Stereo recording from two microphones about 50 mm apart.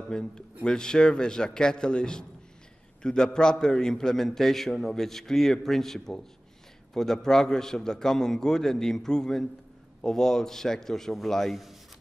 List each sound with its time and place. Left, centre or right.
0.1 s a man's voice: centre